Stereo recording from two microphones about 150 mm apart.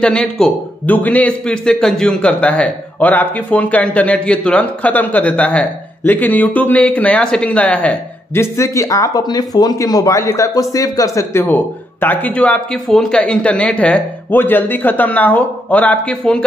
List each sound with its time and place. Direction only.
0.0 s a man's voice: 5° left (ahead or behind); by 11.4 s 20° left (ahead or behind)
11.4 s a man's voice: 10° left (ahead or behind)